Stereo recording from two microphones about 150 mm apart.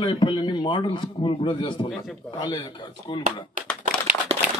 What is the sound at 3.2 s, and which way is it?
Speech, 60° right (ahead or behind).